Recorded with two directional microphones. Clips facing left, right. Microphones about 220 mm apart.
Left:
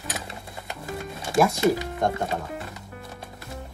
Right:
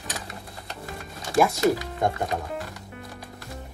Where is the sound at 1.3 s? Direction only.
Centre (ahead or behind).